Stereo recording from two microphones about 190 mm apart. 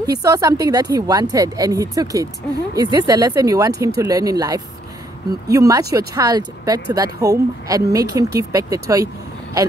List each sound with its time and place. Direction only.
0.0 s speech: 20° right (ahead or behind)